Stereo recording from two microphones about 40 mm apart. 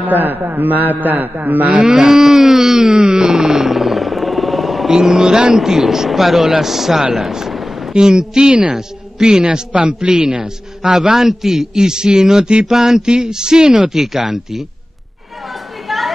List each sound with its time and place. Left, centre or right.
0.1 s a man's voice: right
1.8 s a sound: centre
4.8 s speech: centre
7.9 s a man's voice: centre
15.9 s chatter: centre